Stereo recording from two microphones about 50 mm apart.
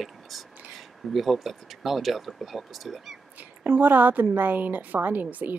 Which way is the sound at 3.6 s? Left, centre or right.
Right.